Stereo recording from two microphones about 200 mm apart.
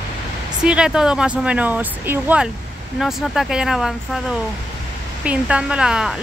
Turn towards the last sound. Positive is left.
turn(degrees=-5)  # may be behind; listen again after turning